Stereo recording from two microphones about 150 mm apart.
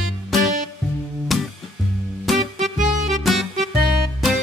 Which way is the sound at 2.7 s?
60° right (ahead or behind).